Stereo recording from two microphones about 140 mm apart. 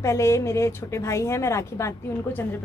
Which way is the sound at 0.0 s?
20° left (ahead or behind).